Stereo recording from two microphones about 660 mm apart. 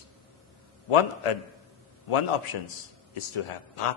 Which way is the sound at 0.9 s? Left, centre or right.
Left.